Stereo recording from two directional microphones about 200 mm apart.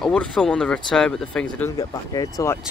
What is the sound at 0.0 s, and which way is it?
Speech, 5° left (ahead or behind).